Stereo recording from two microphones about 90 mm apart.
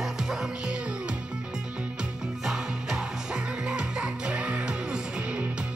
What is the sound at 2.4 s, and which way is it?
Music, 5° right (ahead or behind).